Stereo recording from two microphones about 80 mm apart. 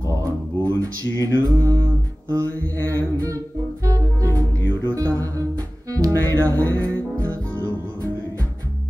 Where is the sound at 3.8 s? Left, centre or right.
Right.